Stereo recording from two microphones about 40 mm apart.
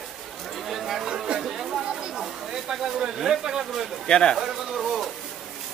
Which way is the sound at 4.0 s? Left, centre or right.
Left.